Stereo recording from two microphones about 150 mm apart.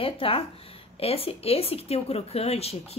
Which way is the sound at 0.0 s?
40° left (ahead or behind).